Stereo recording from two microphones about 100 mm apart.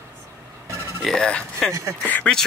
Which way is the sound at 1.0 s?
5° left (ahead or behind).